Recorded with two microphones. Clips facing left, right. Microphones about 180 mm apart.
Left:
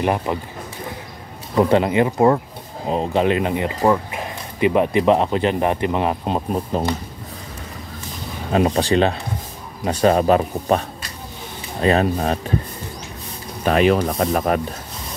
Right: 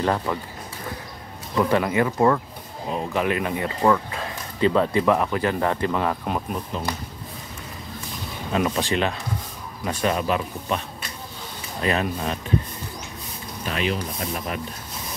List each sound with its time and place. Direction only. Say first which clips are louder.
0.0 s speech: left 3 dB; 20° left (ahead or behind)
1.5 s speech: left 5 dB; 30° left (ahead or behind)
8.5 s speech: left 6 dB; 35° left (ahead or behind)
13.7 s speech: left 11 dB; 55° left (ahead or behind)
14.0 s speech: left 10 dB; 75° left (ahead or behind); by 14.6 s 60° left (ahead or behind)